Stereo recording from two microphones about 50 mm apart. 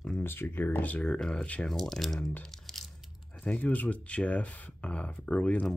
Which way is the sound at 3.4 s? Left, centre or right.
Left.